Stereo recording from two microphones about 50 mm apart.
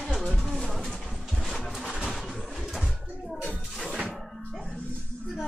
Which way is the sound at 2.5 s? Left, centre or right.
Centre.